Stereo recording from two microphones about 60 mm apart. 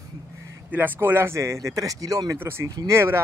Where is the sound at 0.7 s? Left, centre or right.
Right.